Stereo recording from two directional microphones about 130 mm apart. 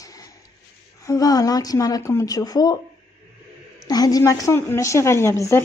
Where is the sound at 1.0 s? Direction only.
25° left (ahead or behind).